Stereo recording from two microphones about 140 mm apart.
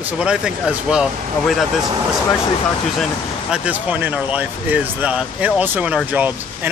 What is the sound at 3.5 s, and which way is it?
Speech, 10° right (ahead or behind).